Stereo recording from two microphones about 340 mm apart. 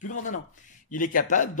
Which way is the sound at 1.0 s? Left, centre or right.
Left.